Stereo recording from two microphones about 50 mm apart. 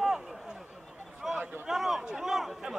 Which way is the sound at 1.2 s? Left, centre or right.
Centre.